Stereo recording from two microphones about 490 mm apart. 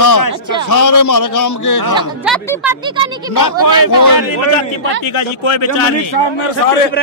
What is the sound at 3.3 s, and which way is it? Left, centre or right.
Speech, left.